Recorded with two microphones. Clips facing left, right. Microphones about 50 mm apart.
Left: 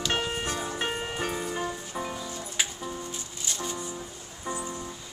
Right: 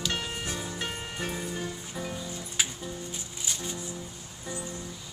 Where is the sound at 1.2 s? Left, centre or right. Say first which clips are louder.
Left 1 dB; centre.